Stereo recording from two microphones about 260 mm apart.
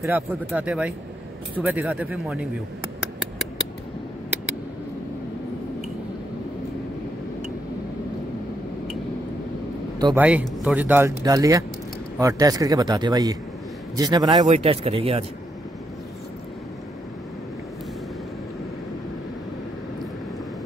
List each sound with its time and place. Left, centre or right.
0.0 s speech: centre
9.9 s speech: centre